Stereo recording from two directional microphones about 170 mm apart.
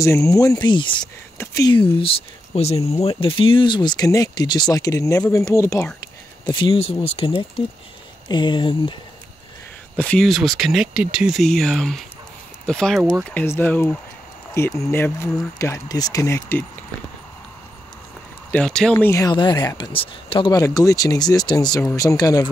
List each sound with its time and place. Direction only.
0.0 s speech: 15° left (ahead or behind)
1.8 s speech: 35° left (ahead or behind); by 5.9 s 15° left (ahead or behind)
6.4 s speech: 30° left (ahead or behind)
9.9 s speech: 5° left (ahead or behind)
18.5 s speech: 5° left (ahead or behind); by 22.5 s 20° left (ahead or behind)